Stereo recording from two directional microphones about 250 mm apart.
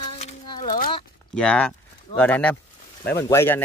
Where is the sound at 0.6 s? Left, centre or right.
Left.